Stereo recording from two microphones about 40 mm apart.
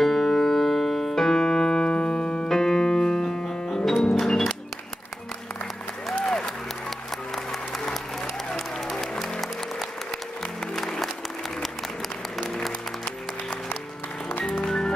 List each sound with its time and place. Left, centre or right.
0.0 s piano: centre
1.9 s music: left
2.4 s piano: centre
3.8 s music: centre
8.5 s applause: centre
10.7 s music: centre
14.4 s music: centre